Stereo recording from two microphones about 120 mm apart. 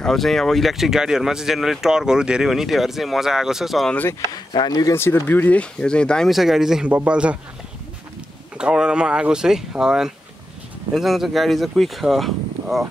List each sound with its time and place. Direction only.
0.0 s speech: 5° left (ahead or behind)
3.9 s speech: 15° left (ahead or behind)
4.5 s speech: 35° left (ahead or behind)
4.9 s speech: 20° left (ahead or behind); by 7.3 s 10° right (ahead or behind)
8.5 s speech: 5° right (ahead or behind)